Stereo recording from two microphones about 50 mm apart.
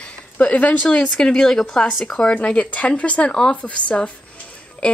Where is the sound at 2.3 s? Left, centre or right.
Left.